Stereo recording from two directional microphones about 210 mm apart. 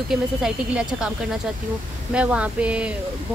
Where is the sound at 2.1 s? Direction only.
5° right (ahead or behind).